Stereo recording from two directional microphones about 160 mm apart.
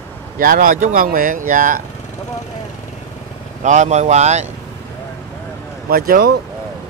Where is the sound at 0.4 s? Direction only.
60° right (ahead or behind).